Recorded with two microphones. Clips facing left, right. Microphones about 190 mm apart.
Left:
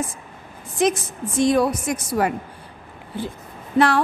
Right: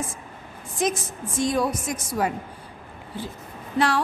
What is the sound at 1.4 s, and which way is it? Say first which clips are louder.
Speech: left 5 dB; 65° left (ahead or behind).